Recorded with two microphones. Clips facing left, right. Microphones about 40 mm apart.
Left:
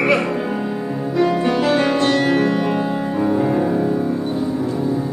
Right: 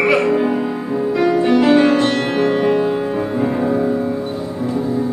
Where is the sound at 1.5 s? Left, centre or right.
Centre.